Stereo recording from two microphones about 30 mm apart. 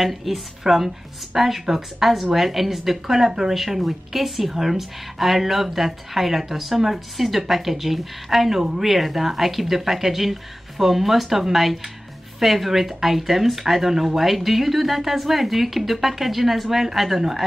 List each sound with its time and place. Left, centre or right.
0.0 s speech: centre
8.5 s speech: centre
8.8 s speech: centre